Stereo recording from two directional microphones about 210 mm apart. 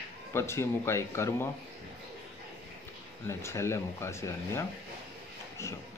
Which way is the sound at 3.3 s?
10° left (ahead or behind).